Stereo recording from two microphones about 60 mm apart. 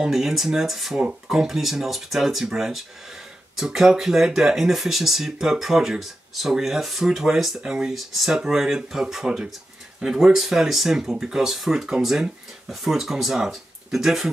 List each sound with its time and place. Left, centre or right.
0.0 s speech: centre